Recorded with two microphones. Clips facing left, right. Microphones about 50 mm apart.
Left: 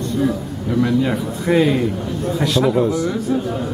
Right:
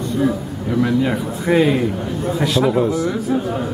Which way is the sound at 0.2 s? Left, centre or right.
Centre.